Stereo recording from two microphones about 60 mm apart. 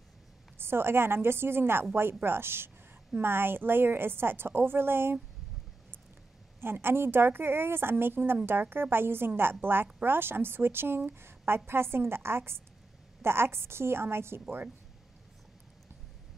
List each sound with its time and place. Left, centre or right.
0.6 s a woman's voice: right
6.6 s a woman's voice: right